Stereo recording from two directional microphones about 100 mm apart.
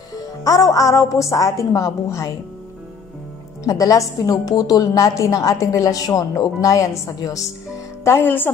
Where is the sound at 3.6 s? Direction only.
35° left (ahead or behind).